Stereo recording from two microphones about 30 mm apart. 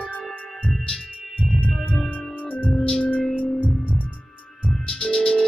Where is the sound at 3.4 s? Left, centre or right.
Left.